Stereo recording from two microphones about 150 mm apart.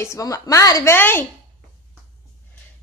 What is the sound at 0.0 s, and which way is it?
A woman's voice, 20° left (ahead or behind).